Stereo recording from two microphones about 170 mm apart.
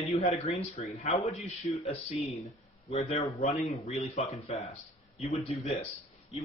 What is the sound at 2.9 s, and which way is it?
Speech, 40° left (ahead or behind).